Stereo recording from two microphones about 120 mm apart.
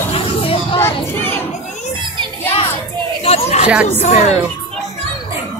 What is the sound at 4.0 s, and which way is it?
Speech, 70° left (ahead or behind).